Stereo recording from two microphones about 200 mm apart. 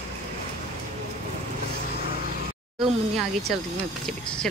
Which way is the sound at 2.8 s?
Centre (ahead or behind).